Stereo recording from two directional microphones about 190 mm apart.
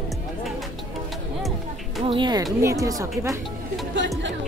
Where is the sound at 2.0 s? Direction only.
25° right (ahead or behind).